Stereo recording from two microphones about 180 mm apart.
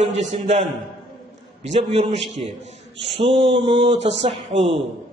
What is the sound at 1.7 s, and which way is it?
Speech, 35° right (ahead or behind).